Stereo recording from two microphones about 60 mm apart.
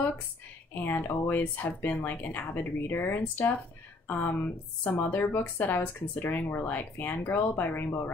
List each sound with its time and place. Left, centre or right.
0.8 s speech: left